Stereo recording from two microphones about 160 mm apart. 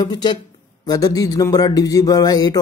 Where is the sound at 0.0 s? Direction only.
30° left (ahead or behind).